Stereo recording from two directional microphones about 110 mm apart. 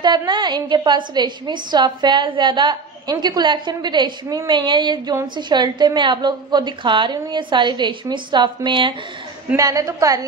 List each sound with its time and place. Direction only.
0.0 s a woman's voice: 40° right (ahead or behind)
9.6 s a woman's voice: 30° right (ahead or behind)